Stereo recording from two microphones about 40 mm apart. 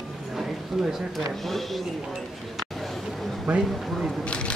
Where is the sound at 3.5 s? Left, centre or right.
Right.